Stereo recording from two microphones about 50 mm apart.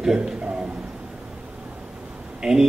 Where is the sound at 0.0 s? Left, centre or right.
Centre.